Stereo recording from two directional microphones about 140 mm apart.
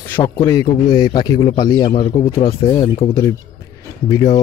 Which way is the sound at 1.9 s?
40° left (ahead or behind).